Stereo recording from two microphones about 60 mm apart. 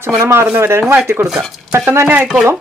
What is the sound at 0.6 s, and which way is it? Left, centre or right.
Speech, right.